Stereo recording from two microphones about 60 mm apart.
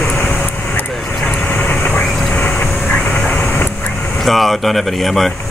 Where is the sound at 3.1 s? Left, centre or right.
Centre.